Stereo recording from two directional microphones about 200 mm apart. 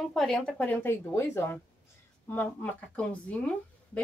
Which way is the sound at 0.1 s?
Centre (ahead or behind).